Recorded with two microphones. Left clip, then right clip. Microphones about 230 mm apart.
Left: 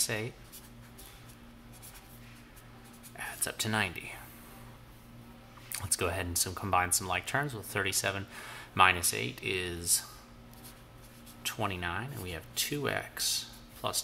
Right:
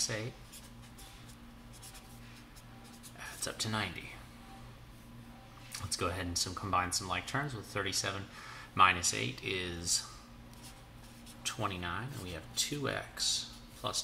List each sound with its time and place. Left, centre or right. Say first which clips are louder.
3.2 s whispering: left 3 dB; left
5.7 s speech: left 3 dB; left
11.5 s speech: left 3 dB; left